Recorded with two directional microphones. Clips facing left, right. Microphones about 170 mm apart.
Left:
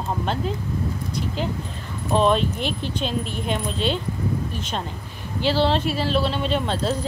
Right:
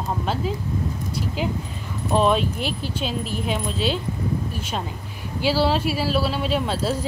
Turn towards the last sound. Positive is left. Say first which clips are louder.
# even
turn(degrees=-5)  # may be behind; listen again after turning